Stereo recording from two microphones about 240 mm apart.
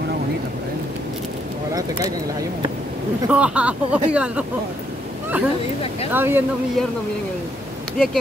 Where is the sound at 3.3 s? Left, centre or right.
Centre.